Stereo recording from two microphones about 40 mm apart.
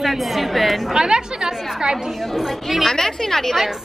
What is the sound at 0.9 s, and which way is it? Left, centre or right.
A woman's voice, right.